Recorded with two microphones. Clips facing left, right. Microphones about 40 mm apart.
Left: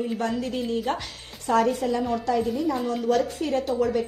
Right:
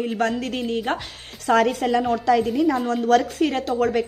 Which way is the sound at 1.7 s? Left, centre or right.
Right.